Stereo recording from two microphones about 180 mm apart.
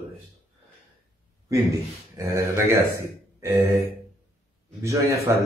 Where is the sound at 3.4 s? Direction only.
15° right (ahead or behind).